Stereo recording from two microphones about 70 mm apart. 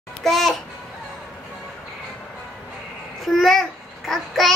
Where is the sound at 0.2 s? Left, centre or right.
Centre.